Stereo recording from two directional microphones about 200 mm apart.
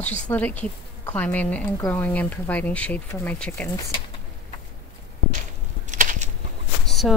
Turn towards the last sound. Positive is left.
turn(degrees=0)  # may be behind; listen again after turning